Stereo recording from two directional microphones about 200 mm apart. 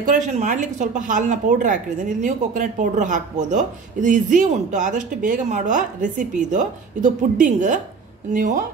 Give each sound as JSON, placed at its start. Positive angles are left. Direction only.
{"t": 0.0, "sound": "speech", "side_deg": -40}